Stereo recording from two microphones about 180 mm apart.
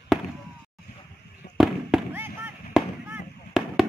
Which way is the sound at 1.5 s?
Centre (ahead or behind).